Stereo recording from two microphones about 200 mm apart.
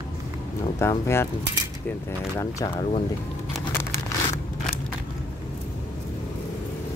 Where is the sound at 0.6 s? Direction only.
15° left (ahead or behind).